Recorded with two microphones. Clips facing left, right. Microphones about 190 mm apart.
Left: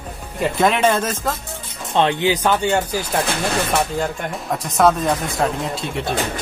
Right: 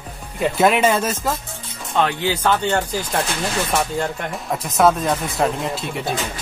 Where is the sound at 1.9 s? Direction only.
25° left (ahead or behind).